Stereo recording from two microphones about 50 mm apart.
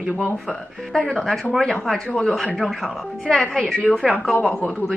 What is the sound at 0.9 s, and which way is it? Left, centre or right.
Speech, centre.